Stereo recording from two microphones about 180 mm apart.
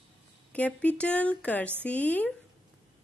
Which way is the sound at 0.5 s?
10° left (ahead or behind).